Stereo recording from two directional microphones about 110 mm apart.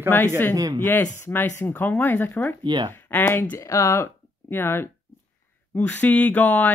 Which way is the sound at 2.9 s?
20° left (ahead or behind).